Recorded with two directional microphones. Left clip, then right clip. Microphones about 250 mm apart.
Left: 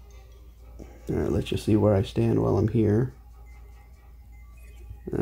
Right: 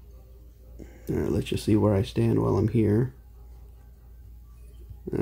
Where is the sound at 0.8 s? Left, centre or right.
Centre.